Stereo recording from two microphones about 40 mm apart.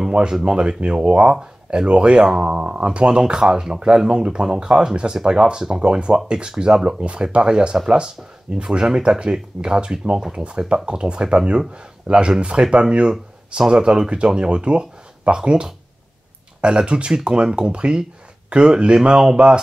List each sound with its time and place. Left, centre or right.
0.3 s speech: centre